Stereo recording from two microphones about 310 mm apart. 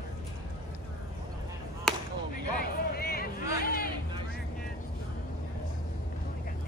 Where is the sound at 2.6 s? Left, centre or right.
Left.